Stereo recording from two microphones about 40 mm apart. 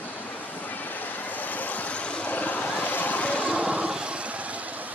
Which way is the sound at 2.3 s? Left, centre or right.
Left.